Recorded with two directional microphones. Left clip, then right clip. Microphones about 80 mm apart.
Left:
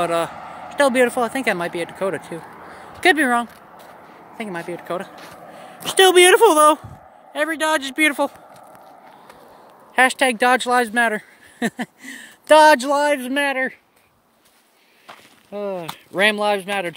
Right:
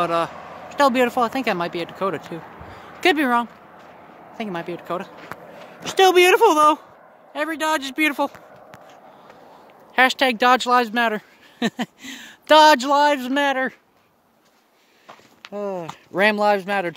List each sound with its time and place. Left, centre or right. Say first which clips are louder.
0.0 s speech: left 1 dB; centre
4.1 s a sound: left 1 dB; centre
4.4 s speech: even; right
4.7 s speech: left 3 dB; centre
5.0 s a sound: even; centre
5.9 s speech: left 2 dB; centre
9.9 s speech: left 1 dB; centre
11.7 s a sound: right 1 dB; right
12.4 s speech: left 1 dB; centre
13.2 s speech: even; right
15.5 s speech: left 1 dB; centre
16.2 s speech: even; right